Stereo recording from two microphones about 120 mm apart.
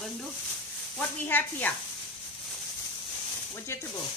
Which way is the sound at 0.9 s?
15° left (ahead or behind).